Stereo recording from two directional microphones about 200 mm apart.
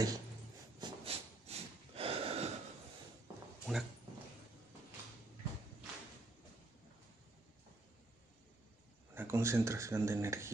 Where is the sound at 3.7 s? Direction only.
Centre (ahead or behind).